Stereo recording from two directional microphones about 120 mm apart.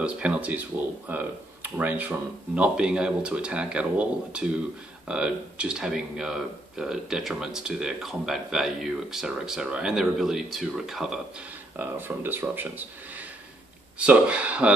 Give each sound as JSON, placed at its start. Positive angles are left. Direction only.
{"t": 0.0, "sound": "speech", "side_deg": -10}
{"t": 11.7, "sound": "speech", "side_deg": -15}
{"t": 13.9, "sound": "speech", "side_deg": -10}